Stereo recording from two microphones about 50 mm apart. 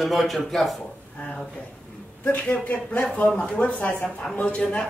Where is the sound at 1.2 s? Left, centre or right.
Centre.